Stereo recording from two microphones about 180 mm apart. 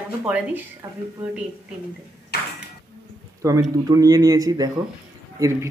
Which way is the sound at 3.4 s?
20° right (ahead or behind).